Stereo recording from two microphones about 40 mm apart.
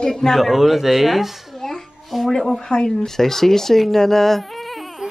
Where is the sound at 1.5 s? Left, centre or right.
Centre.